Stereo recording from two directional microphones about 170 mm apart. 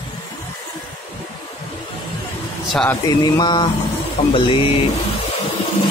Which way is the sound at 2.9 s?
25° left (ahead or behind).